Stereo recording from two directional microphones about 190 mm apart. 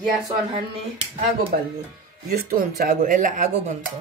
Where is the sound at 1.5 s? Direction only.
45° right (ahead or behind).